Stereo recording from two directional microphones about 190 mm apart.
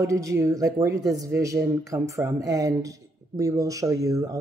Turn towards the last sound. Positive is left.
turn(degrees=-20)  # may be behind; listen again after turning